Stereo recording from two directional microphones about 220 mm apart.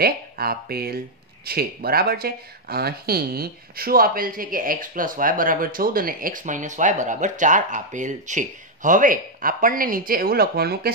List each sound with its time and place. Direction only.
0.0 s speech: 45° right (ahead or behind)